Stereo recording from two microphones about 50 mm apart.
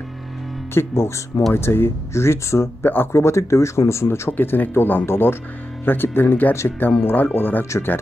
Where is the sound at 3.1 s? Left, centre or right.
Left.